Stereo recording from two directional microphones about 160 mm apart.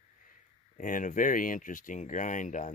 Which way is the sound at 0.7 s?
55° left (ahead or behind).